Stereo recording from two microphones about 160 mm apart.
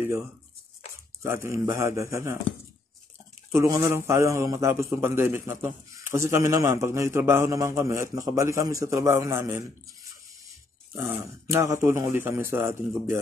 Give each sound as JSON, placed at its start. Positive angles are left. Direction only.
{"t": 1.2, "sound": "a man's voice", "side_deg": -15}
{"t": 3.5, "sound": "a man's voice", "side_deg": -20}
{"t": 11.0, "sound": "a man's voice", "side_deg": -15}